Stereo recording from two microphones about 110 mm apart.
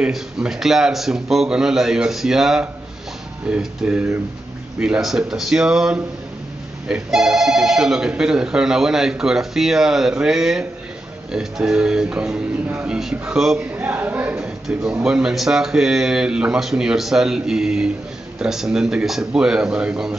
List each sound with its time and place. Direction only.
0.0 s speech: 5° right (ahead or behind)